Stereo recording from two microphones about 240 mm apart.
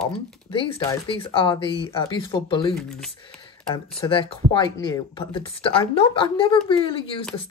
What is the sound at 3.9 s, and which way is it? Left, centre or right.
Speech, left.